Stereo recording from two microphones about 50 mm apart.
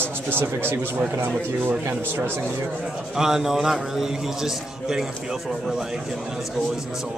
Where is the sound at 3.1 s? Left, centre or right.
Centre.